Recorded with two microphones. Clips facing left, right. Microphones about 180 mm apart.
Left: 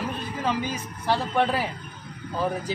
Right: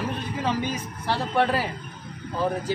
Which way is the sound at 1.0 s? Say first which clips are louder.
Even; 15° left (ahead or behind).